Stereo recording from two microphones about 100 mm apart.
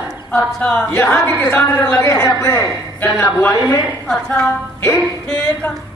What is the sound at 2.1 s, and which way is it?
Speech, 30° left (ahead or behind).